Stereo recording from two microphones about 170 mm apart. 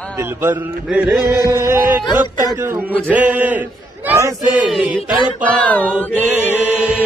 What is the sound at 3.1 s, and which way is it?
A man's voice, 10° right (ahead or behind).